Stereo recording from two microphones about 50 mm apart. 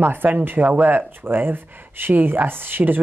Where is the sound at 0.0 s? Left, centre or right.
Right.